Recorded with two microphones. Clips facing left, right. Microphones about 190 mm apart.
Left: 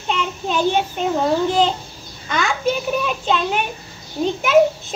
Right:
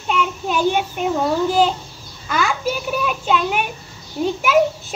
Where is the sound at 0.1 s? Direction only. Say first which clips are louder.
Right 1 dB; 10° right (ahead or behind).